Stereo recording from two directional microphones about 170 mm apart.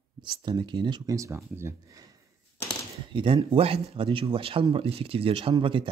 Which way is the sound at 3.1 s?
30° right (ahead or behind).